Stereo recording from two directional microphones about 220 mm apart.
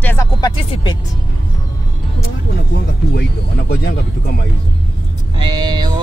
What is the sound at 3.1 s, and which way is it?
Speech, 50° left (ahead or behind).